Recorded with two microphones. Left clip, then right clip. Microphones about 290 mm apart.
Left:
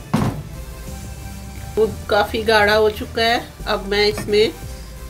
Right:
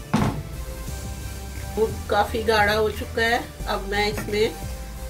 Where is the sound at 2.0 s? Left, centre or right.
Left.